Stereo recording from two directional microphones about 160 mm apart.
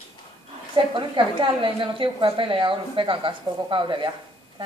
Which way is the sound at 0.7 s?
30° right (ahead or behind).